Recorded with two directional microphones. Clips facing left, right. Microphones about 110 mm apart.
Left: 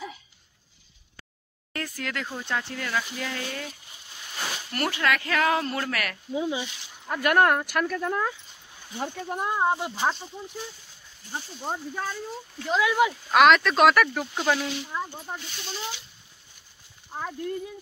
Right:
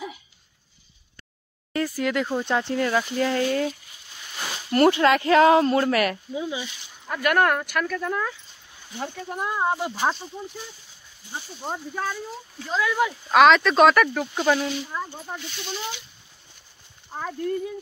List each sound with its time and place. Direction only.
1.7 s speech: 10° right (ahead or behind)
2.4 s speech: 25° right (ahead or behind)
4.4 s a sound: centre (ahead or behind)
4.7 s speech: 25° right (ahead or behind)
6.5 s speech: 25° left (ahead or behind)
9.3 s speech: 30° left (ahead or behind)
9.8 s speech: 5° right (ahead or behind)
11.4 s speech: centre (ahead or behind)
15.0 s speech: 10° left (ahead or behind)
15.3 s speech: 35° left (ahead or behind)
17.1 s speech: 5° left (ahead or behind)